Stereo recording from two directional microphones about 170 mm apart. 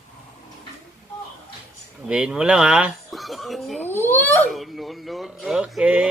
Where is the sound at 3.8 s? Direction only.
10° left (ahead or behind).